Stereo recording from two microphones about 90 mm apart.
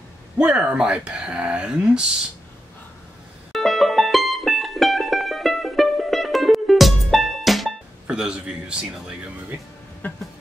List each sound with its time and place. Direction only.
0.4 s speech: 10° right (ahead or behind)
3.5 s music: centre (ahead or behind)
10.0 s music: 15° left (ahead or behind)